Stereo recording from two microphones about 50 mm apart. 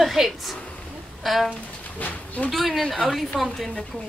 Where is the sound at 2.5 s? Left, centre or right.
Centre.